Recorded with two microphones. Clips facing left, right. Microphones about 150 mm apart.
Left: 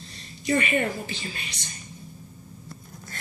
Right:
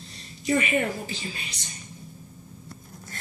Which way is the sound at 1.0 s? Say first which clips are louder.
Even; 35° right (ahead or behind).